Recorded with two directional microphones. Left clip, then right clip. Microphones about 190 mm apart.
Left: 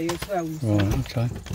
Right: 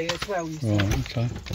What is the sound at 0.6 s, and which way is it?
Speech, centre (ahead or behind).